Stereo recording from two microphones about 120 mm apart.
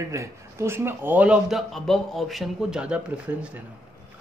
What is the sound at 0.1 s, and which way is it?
Speech, 25° right (ahead or behind).